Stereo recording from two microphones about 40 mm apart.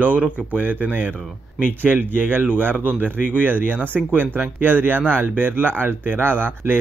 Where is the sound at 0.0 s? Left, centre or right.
Right.